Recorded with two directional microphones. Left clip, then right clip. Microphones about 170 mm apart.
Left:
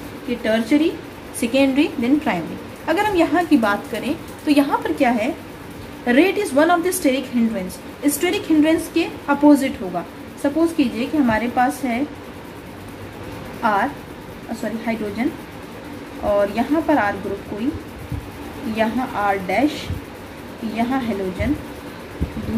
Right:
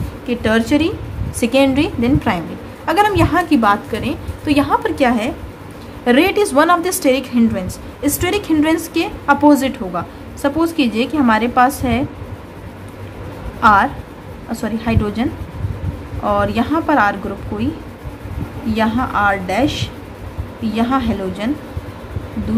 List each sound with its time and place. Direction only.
0.4 s a woman's voice: 50° right (ahead or behind)
1.4 s a woman's voice: 30° right (ahead or behind)
13.6 s a woman's voice: 40° right (ahead or behind)
16.3 s a woman's voice: 40° right (ahead or behind)
18.8 s a woman's voice: 40° right (ahead or behind)